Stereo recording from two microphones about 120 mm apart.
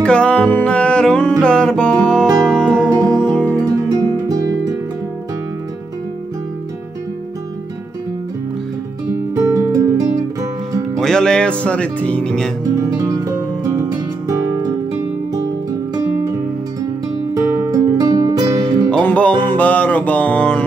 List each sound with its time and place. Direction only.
0.0 s music: 10° left (ahead or behind)
3.6 s music: 30° right (ahead or behind)
9.1 s music: 25° right (ahead or behind)
11.0 s speech: 5° left (ahead or behind)
12.6 s music: 25° right (ahead or behind)
16.8 s music: 25° right (ahead or behind)
18.9 s music: 10° left (ahead or behind)